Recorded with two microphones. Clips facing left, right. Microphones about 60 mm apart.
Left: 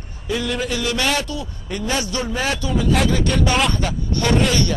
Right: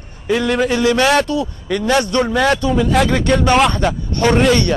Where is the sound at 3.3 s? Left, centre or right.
Centre.